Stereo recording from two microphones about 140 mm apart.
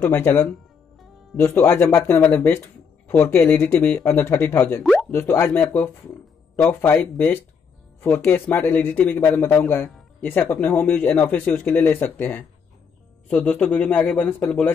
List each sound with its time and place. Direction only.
0.0 s speech: 15° left (ahead or behind)